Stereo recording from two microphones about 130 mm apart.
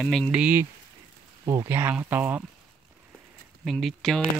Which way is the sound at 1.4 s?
25° right (ahead or behind).